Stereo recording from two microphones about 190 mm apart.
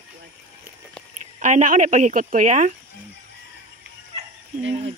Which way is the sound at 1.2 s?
40° right (ahead or behind).